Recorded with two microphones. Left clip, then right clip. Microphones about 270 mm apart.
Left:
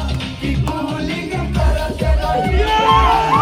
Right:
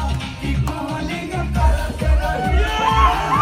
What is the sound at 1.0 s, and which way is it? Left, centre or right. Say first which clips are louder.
Music: left 3 dB; centre.